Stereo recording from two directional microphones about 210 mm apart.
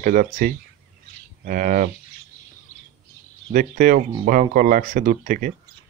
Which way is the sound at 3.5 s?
40° right (ahead or behind).